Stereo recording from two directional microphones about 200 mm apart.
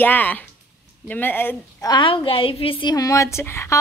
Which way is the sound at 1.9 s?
25° left (ahead or behind).